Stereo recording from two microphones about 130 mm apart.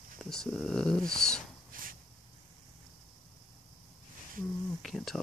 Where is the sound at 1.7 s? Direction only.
90° right.